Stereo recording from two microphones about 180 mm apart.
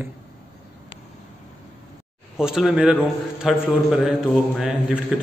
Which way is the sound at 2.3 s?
5° right (ahead or behind).